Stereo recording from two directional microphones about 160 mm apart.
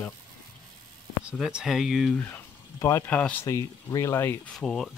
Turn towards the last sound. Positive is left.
turn(degrees=0)  # may be behind; listen again after turning